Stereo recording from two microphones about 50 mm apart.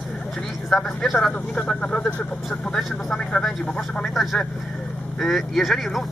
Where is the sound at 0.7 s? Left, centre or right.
Centre; by 2.2 s left.